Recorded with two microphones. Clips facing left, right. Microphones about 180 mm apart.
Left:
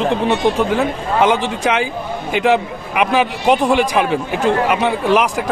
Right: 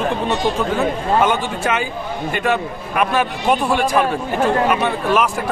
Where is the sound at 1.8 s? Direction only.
90° left.